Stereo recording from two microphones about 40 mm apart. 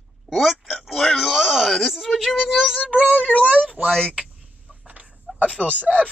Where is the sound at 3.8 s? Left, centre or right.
Right.